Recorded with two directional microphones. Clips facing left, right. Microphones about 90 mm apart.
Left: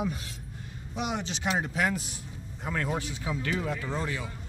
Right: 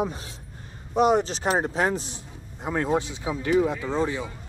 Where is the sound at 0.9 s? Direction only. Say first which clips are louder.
Right 12 dB; 40° right (ahead or behind); by 4.2 s 20° right (ahead or behind).